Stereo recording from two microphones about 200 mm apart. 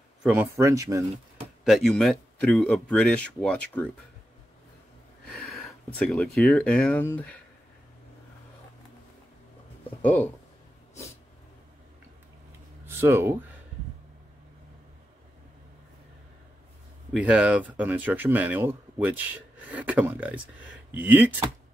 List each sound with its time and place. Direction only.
0.2 s speech: 5° right (ahead or behind)
0.6 s speech: 15° right (ahead or behind)
1.6 s speech: centre (ahead or behind)
5.2 s speech: 5° left (ahead or behind)
12.8 s speech: 10° right (ahead or behind)
17.1 s speech: 5° right (ahead or behind)